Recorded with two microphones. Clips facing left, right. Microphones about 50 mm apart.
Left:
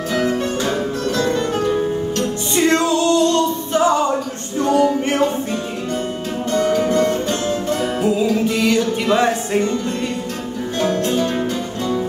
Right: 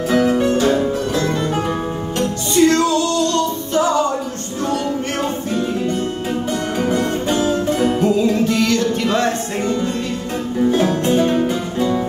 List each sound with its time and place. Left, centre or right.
0.2 s music: centre
1.1 s music: centre
2.5 s music: left
6.5 s music: centre
8.0 s music: centre
11.1 s music: centre